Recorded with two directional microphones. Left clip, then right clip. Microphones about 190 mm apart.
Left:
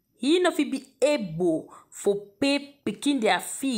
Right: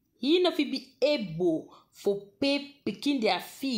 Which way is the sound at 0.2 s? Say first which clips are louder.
Left 2 dB; 10° left (ahead or behind).